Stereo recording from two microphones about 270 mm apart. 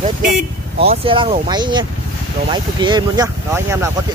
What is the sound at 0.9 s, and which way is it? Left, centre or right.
Speech, right.